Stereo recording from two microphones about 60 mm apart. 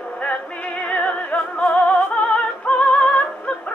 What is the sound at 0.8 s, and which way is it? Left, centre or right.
Music, left.